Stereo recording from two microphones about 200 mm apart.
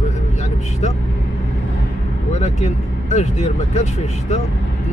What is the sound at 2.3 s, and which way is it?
Speech, 35° left (ahead or behind).